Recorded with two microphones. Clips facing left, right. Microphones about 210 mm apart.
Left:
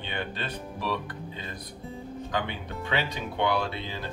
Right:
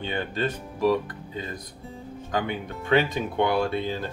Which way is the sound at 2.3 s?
45° right (ahead or behind).